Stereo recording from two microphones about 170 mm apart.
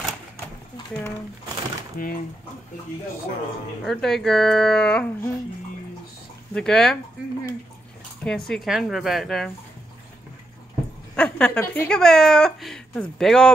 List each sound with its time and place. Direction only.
2.0 s speech: 55° left (ahead or behind)
3.8 s a woman's voice: centre (ahead or behind)
6.5 s a woman's voice: 5° left (ahead or behind)
8.2 s a woman's voice: 5° left (ahead or behind)
11.1 s a woman's voice: 5° left (ahead or behind)